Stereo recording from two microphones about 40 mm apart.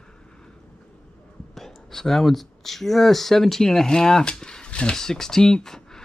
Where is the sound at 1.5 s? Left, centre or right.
Centre; by 4.9 s left.